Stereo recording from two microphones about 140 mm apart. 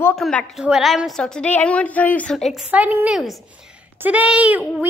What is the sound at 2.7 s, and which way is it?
Speech, 10° right (ahead or behind).